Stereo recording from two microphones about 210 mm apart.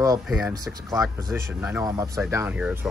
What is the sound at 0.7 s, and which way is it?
Speech, 15° right (ahead or behind).